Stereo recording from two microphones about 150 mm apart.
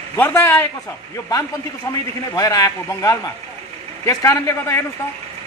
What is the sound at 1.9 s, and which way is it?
A man's voice, 20° left (ahead or behind).